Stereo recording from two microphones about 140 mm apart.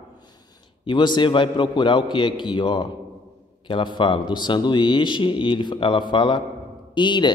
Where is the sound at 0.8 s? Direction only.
35° left (ahead or behind).